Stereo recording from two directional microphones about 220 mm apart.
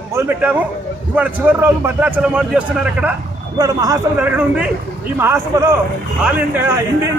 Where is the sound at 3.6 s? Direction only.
15° right (ahead or behind).